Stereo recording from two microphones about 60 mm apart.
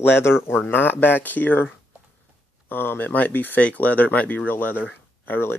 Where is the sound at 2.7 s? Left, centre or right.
Left.